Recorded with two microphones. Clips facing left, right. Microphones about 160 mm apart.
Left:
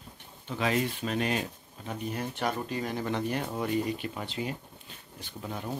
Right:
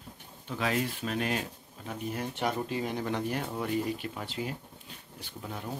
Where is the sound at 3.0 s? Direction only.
10° right (ahead or behind).